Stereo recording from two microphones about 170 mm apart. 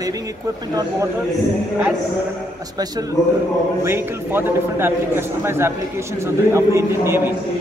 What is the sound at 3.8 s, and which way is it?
A man's voice, 15° right (ahead or behind).